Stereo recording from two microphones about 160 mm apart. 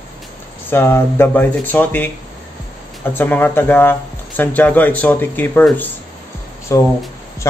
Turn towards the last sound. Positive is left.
turn(degrees=20)  # may be behind; listen again after turning